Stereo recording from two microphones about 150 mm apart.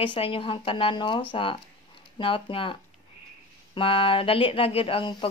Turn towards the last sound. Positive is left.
turn(degrees=35)  # may be behind; listen again after turning